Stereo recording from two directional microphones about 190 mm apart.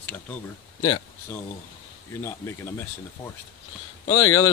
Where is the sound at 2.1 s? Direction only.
15° left (ahead or behind).